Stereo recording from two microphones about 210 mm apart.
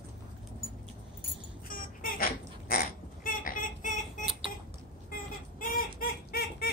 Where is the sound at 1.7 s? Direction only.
40° left (ahead or behind).